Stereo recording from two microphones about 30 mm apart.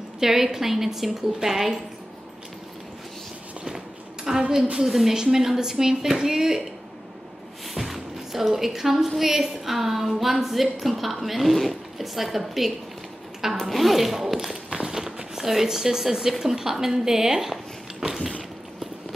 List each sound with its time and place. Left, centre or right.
0.2 s a woman's voice: centre
3.6 s a sound: right
4.8 s a woman's voice: centre
5.1 s a woman's voice: centre
7.7 s music: centre
9.2 s a woman's voice: centre
18.0 s a sound: centre